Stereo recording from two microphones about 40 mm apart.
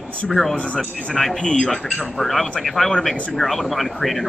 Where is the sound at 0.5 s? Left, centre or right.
Left.